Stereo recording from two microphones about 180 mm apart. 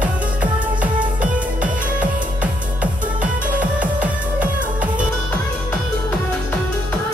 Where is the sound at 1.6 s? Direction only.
10° right (ahead or behind).